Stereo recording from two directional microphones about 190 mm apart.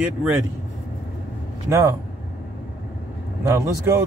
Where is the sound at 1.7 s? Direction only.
15° right (ahead or behind).